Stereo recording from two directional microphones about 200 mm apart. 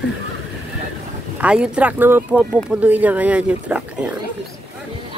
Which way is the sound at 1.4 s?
5° right (ahead or behind).